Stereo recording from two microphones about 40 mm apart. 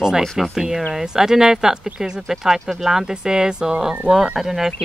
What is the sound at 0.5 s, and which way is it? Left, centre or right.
Speech, centre.